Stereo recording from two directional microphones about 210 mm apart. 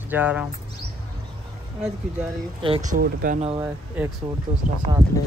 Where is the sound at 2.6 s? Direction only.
25° right (ahead or behind).